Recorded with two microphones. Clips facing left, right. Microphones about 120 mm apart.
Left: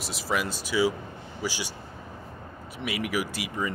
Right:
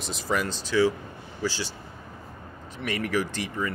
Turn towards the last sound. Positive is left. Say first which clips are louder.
# right 1 dB
turn(degrees=10)  # may be behind; listen again after turning